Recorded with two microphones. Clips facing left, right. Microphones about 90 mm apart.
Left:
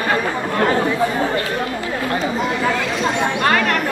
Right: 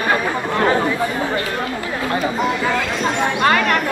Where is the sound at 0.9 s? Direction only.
20° left (ahead or behind).